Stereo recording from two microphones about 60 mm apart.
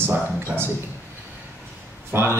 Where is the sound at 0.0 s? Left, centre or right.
Right.